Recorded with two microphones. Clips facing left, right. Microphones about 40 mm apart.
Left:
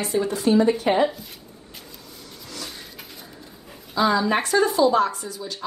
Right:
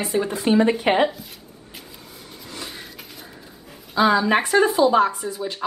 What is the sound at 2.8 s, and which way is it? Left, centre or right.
Dog, centre.